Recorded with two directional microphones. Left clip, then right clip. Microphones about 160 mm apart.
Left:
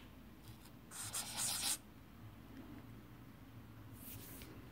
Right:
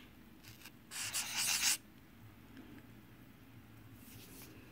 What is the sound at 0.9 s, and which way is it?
Writing, 25° right (ahead or behind).